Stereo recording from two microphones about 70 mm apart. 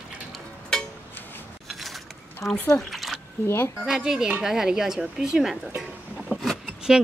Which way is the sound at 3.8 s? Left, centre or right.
Centre.